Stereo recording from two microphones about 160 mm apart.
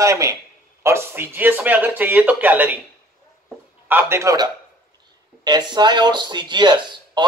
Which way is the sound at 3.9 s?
15° right (ahead or behind).